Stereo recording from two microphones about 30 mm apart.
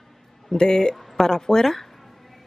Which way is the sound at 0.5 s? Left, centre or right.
Left.